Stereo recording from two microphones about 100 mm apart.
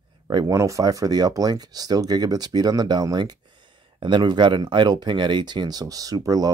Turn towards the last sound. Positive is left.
turn(degrees=-40)  # may be behind; listen again after turning